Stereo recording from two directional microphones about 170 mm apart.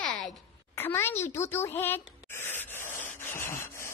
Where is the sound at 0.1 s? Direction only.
Centre (ahead or behind).